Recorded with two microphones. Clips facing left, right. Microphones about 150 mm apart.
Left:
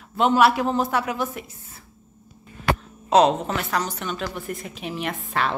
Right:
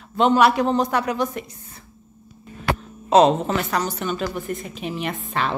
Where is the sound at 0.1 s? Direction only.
5° left (ahead or behind).